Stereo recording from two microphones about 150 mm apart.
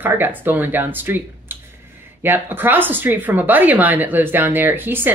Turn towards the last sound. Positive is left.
turn(degrees=-15)  # may be behind; listen again after turning